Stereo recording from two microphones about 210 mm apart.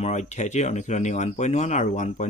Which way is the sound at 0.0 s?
35° left (ahead or behind).